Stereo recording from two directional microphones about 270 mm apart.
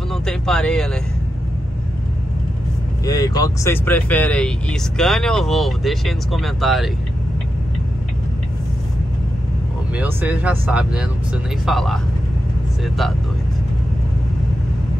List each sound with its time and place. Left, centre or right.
0.1 s speech: centre
3.1 s speech: centre
9.9 s speech: centre